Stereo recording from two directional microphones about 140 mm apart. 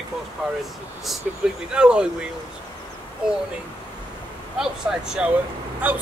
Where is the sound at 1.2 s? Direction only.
10° right (ahead or behind).